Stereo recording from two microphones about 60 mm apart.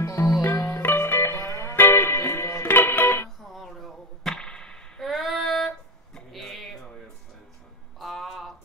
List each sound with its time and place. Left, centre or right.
0.0 s music: left
0.6 s music: left
3.4 s a sound: centre
5.0 s female singing: centre
6.3 s music: centre
8.0 s a sound: centre